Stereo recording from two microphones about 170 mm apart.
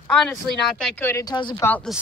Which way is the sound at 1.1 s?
20° left (ahead or behind).